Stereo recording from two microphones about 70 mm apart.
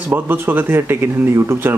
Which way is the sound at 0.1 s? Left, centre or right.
Right.